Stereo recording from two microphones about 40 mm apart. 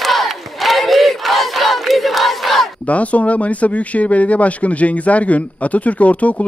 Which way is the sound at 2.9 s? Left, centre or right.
Left.